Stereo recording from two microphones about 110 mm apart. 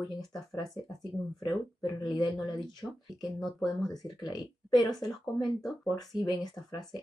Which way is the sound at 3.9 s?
40° left (ahead or behind).